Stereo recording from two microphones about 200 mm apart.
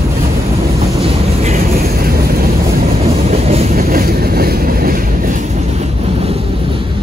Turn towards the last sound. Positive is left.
turn(degrees=-30)  # may be behind; listen again after turning